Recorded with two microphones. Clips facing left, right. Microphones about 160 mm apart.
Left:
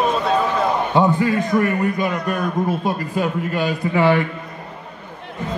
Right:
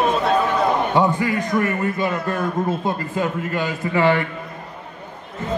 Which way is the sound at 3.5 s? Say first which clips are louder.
Left 3 dB; 15° left (ahead or behind).